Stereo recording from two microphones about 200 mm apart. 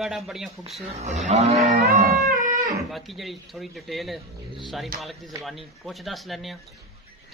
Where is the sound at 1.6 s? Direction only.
40° right (ahead or behind).